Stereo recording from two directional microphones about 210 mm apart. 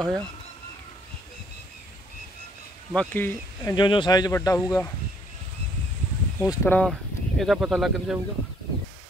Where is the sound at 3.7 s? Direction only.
20° left (ahead or behind).